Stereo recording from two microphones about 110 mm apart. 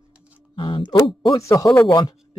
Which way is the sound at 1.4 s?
30° left (ahead or behind).